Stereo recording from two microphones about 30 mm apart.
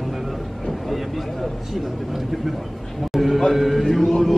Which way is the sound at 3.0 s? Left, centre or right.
Centre.